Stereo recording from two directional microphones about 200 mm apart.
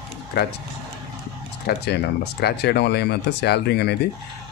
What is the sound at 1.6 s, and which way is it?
Speech, 55° left (ahead or behind).